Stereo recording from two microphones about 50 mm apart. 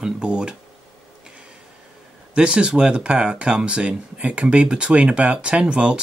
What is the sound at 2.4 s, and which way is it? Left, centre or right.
Speech, centre.